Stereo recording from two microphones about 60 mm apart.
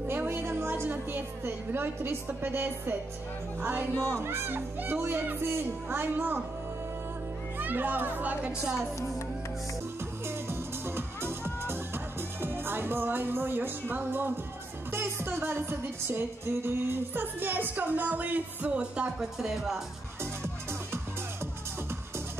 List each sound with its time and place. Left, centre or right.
0.1 s music: right
3.9 s speech: left
4.2 s music: right
7.5 s a child's voice: right; by 8.8 s centre
10.2 s music: right; by 19.2 s centre
19.3 s speech: centre